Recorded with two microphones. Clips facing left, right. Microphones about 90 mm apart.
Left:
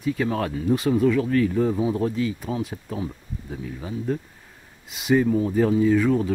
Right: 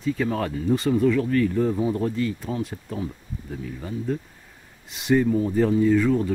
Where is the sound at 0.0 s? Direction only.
5° left (ahead or behind).